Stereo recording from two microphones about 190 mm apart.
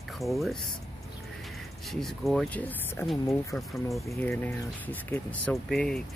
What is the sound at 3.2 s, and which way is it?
Speech, 15° left (ahead or behind).